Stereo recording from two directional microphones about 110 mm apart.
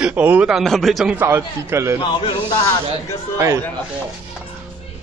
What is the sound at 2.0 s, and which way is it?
Speech, 45° left (ahead or behind).